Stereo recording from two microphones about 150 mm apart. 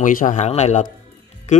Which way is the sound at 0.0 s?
60° left (ahead or behind).